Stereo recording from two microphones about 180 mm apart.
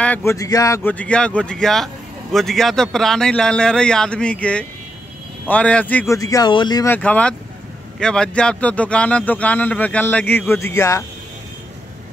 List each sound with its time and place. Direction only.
0.0 s a man's voice: 10° left (ahead or behind)
6.9 s speech: 5° left (ahead or behind)